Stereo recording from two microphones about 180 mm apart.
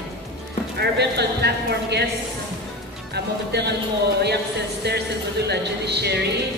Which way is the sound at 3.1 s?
65° right (ahead or behind).